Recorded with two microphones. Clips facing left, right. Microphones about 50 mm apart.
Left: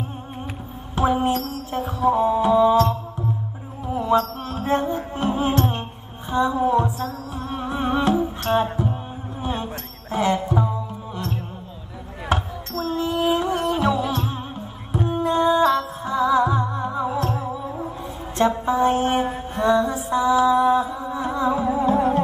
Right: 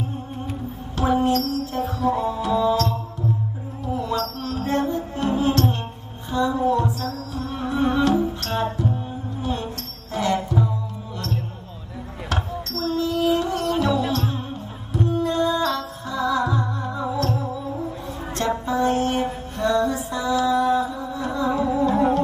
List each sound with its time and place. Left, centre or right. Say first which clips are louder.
0.9 s music: even; centre
12.3 s basketball bounce: left 4 dB; left
12.7 s music: even; left